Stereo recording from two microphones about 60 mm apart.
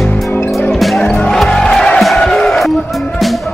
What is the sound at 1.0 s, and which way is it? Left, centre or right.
Music, centre.